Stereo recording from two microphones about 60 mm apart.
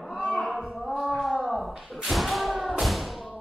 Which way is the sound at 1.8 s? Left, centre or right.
Centre.